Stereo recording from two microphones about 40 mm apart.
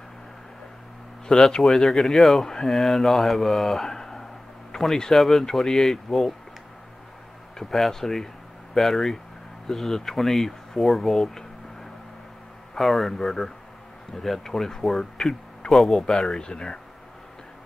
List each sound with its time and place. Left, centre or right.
1.3 s speech: centre
1.6 s speech: centre
2.4 s speech: centre
2.7 s speech: centre
5.1 s speech: centre
7.5 s speech: centre
12.7 s speech: centre
16.3 s speech: left